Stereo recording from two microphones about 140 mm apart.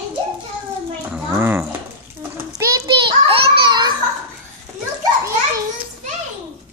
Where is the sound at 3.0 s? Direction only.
35° right (ahead or behind).